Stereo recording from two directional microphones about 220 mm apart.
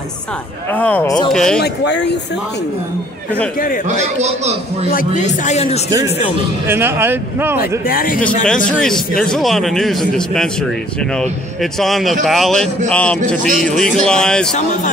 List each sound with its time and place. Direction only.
0.7 s a man's voice: 5° left (ahead or behind)
1.6 s speech: 50° left (ahead or behind)
4.9 s a man's voice: 35° left (ahead or behind)
5.9 s speech: 15° right (ahead or behind)
7.8 s a man's voice: 40° left (ahead or behind)
9.2 s a man's voice: centre (ahead or behind)